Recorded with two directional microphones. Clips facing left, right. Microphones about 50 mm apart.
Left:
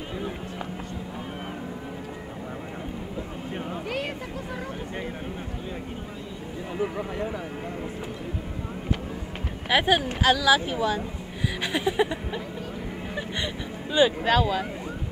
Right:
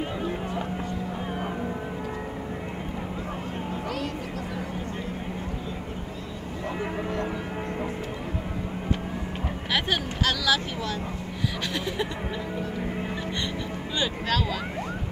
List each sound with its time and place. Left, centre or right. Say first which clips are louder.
9.7 s speech: left 6 dB; centre
13.9 s speech: left 7 dB; centre